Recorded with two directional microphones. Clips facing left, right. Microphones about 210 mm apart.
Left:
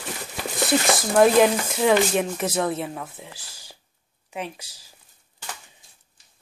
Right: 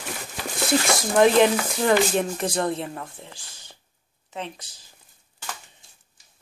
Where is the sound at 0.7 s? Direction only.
Centre (ahead or behind).